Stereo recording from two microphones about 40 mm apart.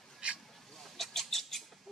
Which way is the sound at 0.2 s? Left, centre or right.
Right.